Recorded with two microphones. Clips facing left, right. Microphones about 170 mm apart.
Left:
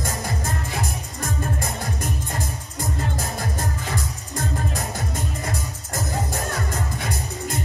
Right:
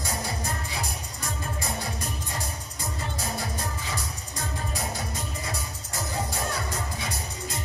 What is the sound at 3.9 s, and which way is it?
Music, 50° left (ahead or behind).